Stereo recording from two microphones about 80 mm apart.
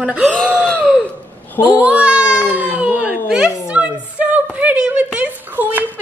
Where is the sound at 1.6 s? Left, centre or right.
Centre.